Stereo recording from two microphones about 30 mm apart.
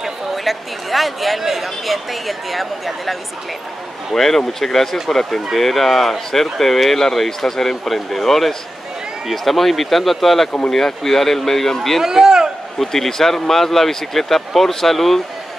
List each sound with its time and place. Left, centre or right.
0.4 s speech: centre
4.1 s speech: centre
12.0 s a man's voice: centre
12.7 s speech: centre